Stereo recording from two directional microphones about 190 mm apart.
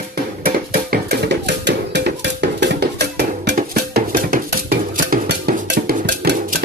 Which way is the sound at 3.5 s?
45° right (ahead or behind).